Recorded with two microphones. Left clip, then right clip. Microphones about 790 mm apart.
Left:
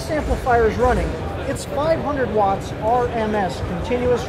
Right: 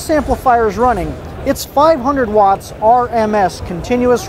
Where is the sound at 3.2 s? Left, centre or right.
Right.